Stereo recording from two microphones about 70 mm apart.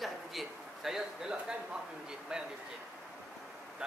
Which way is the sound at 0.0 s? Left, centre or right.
Centre.